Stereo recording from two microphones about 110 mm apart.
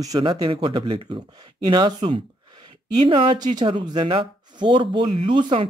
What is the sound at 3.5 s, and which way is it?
Speech, 45° right (ahead or behind).